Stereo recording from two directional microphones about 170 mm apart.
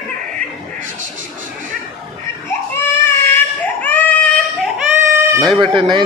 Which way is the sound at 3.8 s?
10° left (ahead or behind).